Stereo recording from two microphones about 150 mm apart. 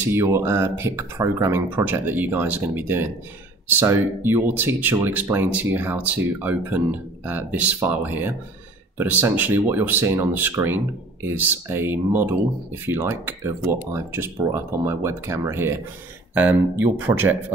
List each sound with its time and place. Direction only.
0.0 s speech: 15° right (ahead or behind)